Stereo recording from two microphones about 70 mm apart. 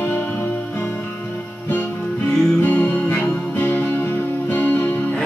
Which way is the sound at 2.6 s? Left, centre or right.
Left.